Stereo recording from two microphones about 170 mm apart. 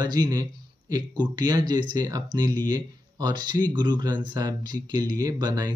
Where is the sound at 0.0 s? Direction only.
25° right (ahead or behind).